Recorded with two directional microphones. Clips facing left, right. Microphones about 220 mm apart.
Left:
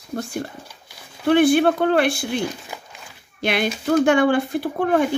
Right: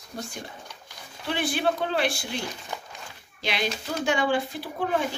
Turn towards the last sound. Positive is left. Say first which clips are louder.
# left 8 dB
turn(degrees=55)  # may be behind; listen again after turning